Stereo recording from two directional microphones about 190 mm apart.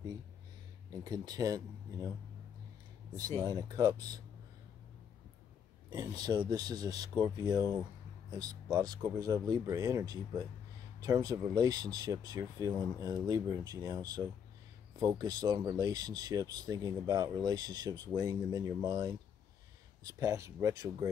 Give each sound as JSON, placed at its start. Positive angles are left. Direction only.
{"t": 1.0, "sound": "speech", "side_deg": -20}
{"t": 3.4, "sound": "speech", "side_deg": -20}
{"t": 5.9, "sound": "speech", "side_deg": -20}